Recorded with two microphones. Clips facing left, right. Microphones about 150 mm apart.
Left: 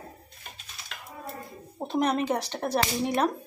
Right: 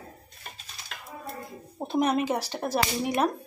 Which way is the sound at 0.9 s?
40° right (ahead or behind).